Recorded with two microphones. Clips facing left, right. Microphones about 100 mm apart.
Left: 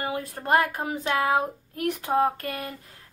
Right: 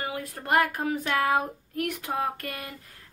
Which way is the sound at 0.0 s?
30° left (ahead or behind).